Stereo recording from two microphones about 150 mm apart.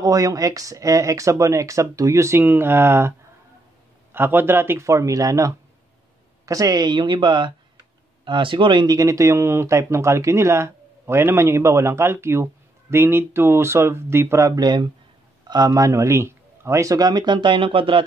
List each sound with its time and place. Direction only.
0.0 s speech: 25° right (ahead or behind)